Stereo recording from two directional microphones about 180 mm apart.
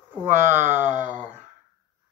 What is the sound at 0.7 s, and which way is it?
Speech, 10° right (ahead or behind).